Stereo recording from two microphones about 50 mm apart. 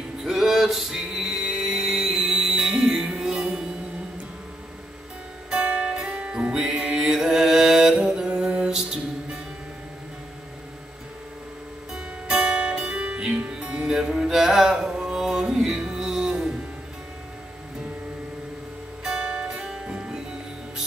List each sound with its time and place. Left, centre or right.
0.2 s music: centre
5.6 s music: right
5.9 s music: centre
11.9 s music: centre
19.0 s music: centre